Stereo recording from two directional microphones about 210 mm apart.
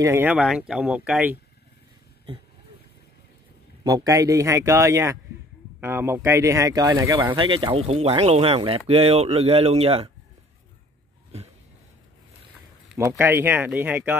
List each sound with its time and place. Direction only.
0.0 s speech: 10° right (ahead or behind)
3.8 s speech: 15° right (ahead or behind)
7.3 s speech: 25° right (ahead or behind)
12.9 s speech: 10° right (ahead or behind)